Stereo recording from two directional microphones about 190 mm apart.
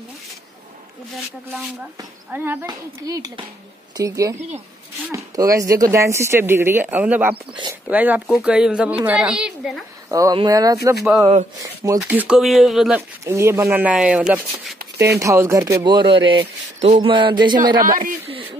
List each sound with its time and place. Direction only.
2.0 s a woman's voice: 10° right (ahead or behind)
10.1 s speech: 20° right (ahead or behind)
12.0 s a woman's voice: 5° right (ahead or behind)
13.2 s speech: 15° right (ahead or behind)
14.8 s a sound: 60° right (ahead or behind)
15.1 s speech: 15° right (ahead or behind)
17.7 s speech: 45° right (ahead or behind)